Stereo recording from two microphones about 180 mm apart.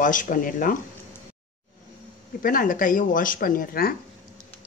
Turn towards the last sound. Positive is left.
turn(degrees=55)  # may be behind; listen again after turning